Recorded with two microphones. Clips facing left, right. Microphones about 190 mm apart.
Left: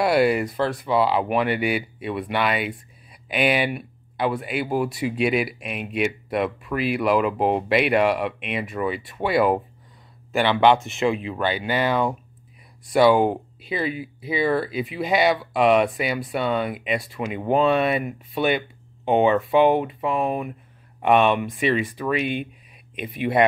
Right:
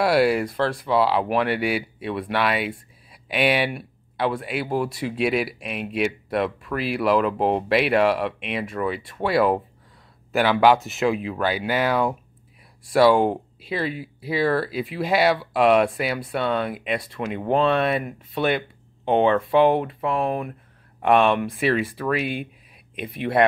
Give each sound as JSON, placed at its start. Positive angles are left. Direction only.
{"t": 0.0, "sound": "speech", "side_deg": 0}
{"t": 3.1, "sound": "a sound", "side_deg": 0}
{"t": 4.4, "sound": "speech", "side_deg": 0}